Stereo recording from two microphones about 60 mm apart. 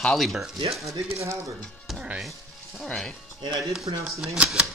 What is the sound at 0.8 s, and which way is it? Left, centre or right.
Speech, right.